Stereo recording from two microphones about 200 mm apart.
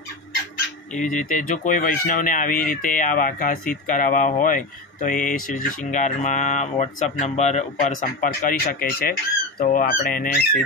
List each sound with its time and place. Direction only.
0.9 s speech: 40° left (ahead or behind)
9.6 s fowl: 45° left (ahead or behind)